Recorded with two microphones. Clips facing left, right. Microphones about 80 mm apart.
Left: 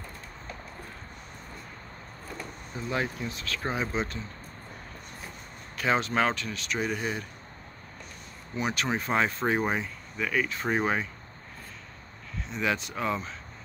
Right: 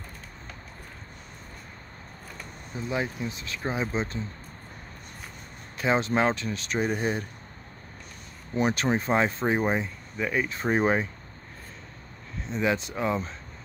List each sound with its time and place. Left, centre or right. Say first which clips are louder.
2.9 s speech: right 1 dB; centre
5.8 s speech: right 2 dB; right
8.5 s speech: right 5 dB; right
12.4 s speech: right 3 dB; right